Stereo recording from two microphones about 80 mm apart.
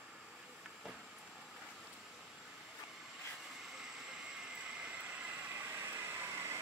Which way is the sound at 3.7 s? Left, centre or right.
Centre.